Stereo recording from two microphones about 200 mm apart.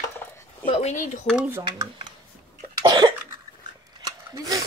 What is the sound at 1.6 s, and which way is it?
Speech, 25° right (ahead or behind).